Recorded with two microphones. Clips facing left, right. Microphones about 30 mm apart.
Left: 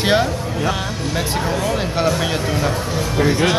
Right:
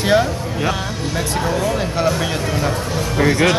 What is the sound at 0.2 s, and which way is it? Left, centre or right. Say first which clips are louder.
Speech: even; centre.